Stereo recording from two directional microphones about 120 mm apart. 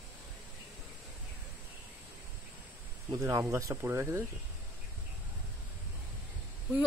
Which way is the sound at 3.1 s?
25° right (ahead or behind).